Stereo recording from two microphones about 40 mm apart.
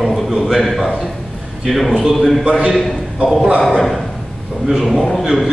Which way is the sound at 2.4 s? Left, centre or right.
Right.